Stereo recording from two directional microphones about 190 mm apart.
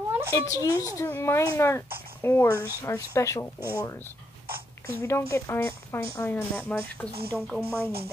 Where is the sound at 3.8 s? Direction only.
15° left (ahead or behind).